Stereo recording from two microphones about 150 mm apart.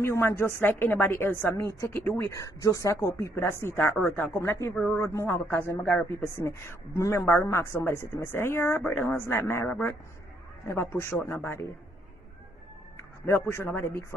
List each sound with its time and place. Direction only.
0.0 s a woman's voice: 20° left (ahead or behind)
4.7 s a man's voice: 5° left (ahead or behind)
5.0 s a woman's voice: 20° left (ahead or behind)
13.3 s a woman's voice: 15° left (ahead or behind)